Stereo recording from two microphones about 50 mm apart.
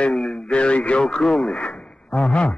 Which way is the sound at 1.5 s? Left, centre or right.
Centre.